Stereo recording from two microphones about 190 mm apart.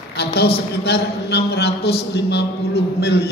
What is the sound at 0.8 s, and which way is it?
A man's voice, 60° left (ahead or behind).